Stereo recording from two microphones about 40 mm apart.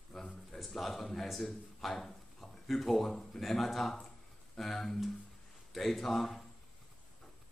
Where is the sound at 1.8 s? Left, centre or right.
Centre.